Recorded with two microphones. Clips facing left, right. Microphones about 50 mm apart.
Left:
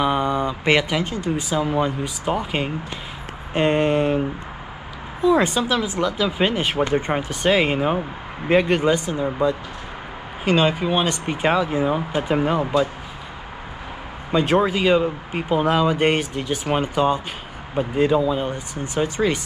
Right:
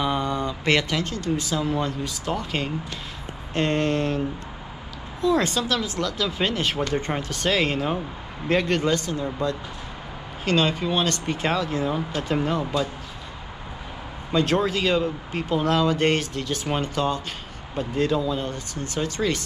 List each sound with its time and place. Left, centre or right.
0.0 s speech: centre
14.3 s speech: centre